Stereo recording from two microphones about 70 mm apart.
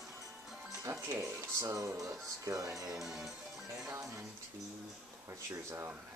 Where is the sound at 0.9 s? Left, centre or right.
Right.